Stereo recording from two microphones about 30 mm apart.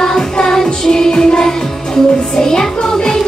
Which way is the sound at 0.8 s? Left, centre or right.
Centre.